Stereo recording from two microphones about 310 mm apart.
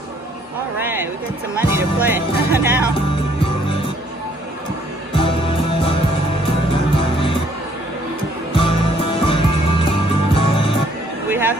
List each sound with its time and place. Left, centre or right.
1.8 s music: centre
2.5 s speech: centre
5.1 s music: centre
8.5 s music: centre
11.2 s a sound: centre